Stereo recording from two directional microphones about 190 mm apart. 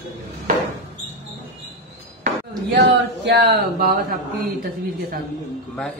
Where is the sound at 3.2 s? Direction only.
65° right (ahead or behind).